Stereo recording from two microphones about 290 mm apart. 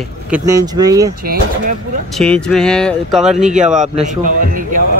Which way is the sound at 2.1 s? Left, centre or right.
Centre.